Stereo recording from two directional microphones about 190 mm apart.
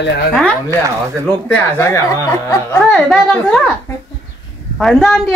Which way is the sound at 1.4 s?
15° left (ahead or behind).